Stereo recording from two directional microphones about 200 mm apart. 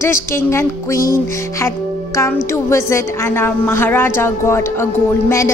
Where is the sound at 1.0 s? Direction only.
45° left (ahead or behind).